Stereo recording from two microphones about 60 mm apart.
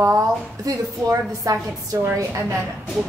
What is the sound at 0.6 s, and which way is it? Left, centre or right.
A woman's voice, right.